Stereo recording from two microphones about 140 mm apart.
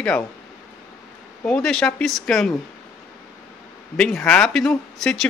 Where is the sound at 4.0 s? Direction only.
5° left (ahead or behind).